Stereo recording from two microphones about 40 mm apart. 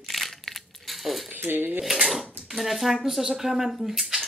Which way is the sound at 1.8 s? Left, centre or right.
Centre.